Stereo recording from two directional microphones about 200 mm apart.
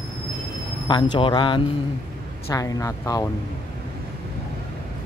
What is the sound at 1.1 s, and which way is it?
Speech, 25° left (ahead or behind).